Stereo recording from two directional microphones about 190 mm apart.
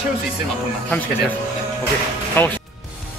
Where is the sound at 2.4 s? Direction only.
10° left (ahead or behind).